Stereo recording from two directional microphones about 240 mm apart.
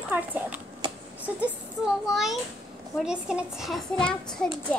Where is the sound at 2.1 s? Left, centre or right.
Centre.